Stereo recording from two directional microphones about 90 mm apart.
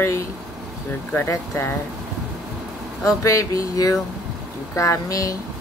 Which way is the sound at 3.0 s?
35° left (ahead or behind).